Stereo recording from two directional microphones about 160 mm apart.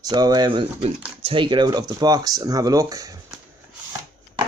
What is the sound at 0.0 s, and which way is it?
Speech, 25° right (ahead or behind).